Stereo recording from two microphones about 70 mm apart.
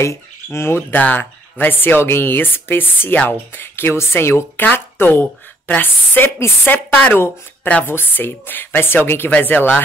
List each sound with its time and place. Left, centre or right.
0.0 s speech: left
0.9 s speech: left
7.8 s speech: left